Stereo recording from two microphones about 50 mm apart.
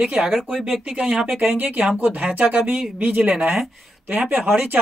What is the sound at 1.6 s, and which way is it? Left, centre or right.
Speech, right.